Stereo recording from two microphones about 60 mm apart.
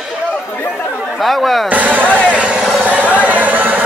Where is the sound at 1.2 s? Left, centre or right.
Centre.